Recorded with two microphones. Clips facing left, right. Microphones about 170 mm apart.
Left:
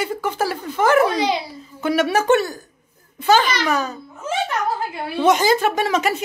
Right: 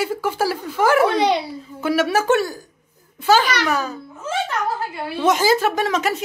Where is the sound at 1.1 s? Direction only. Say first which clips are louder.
Right 3 dB; 60° right (ahead or behind).